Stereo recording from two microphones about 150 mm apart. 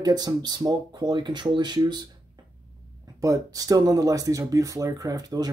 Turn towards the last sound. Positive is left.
turn(degrees=-25)  # may be behind; listen again after turning